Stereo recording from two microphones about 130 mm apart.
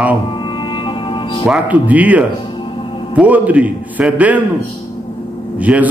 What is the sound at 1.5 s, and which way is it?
Speech, 10° right (ahead or behind).